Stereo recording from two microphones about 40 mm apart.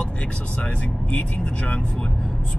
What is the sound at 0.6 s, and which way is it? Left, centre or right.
Speech, left.